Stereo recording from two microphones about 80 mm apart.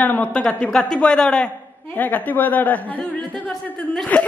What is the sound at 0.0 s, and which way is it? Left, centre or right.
A man's voice, centre.